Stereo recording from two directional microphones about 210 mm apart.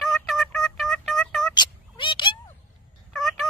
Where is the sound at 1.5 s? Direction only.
20° left (ahead or behind).